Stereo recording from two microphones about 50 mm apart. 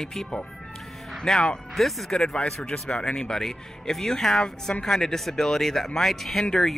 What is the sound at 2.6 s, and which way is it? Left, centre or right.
Speech, centre.